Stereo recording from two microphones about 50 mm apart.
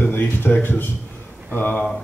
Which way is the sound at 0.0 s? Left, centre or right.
Left.